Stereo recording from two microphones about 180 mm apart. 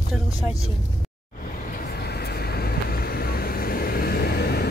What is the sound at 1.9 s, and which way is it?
Vehicle, 60° left (ahead or behind).